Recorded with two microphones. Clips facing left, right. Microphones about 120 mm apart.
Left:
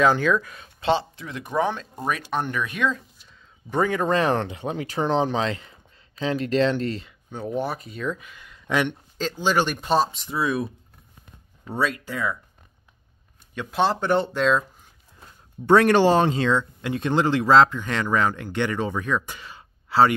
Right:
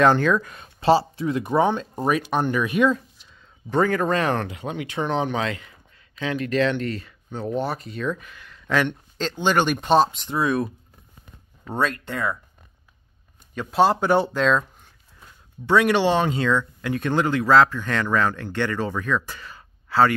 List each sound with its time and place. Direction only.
0.0 s speech: 5° left (ahead or behind)
1.2 s speech: 35° right (ahead or behind)
2.5 s speech: 10° right (ahead or behind)
3.7 s speech: 15° left (ahead or behind)
7.3 s speech: 10° left (ahead or behind)
9.2 s speech: 5° left (ahead or behind)
11.8 s speech: 5° left (ahead or behind)
12.1 s speech: 45° right (ahead or behind)
13.6 s speech: 5° right (ahead or behind)
15.6 s speech: 45° left (ahead or behind); by 20.2 s 25° left (ahead or behind)